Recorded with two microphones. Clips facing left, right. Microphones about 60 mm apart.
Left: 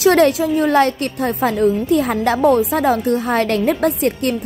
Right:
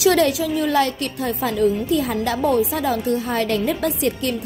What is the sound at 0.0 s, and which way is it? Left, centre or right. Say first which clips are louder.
A woman's voice: left 4 dB; left.